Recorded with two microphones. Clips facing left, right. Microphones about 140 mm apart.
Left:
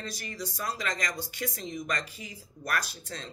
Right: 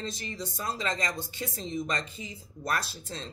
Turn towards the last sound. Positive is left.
turn(degrees=-30)  # may be behind; listen again after turning